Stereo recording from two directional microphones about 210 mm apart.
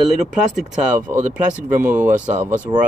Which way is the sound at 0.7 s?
35° right (ahead or behind).